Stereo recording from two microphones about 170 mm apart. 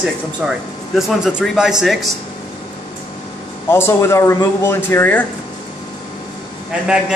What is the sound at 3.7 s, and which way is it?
Speech, 15° left (ahead or behind).